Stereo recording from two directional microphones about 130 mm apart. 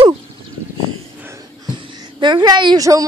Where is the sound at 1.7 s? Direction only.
35° right (ahead or behind).